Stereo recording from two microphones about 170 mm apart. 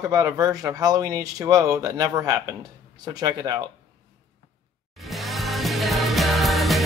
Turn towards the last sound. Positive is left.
turn(degrees=0)  # may be behind; listen again after turning